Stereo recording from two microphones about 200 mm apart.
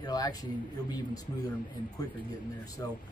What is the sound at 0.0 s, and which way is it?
Speech, 20° left (ahead or behind).